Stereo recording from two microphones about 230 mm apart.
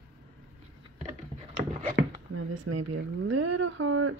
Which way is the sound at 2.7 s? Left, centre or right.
Right.